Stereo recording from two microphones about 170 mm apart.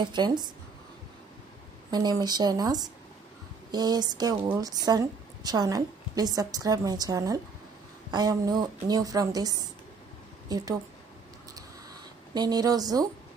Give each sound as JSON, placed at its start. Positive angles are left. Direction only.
{"t": 0.0, "sound": "a woman's voice", "side_deg": -25}
{"t": 1.9, "sound": "a woman's voice", "side_deg": -25}
{"t": 12.4, "sound": "a woman's voice", "side_deg": -25}